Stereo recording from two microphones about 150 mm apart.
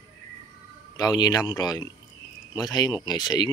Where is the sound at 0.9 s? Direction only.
25° left (ahead or behind).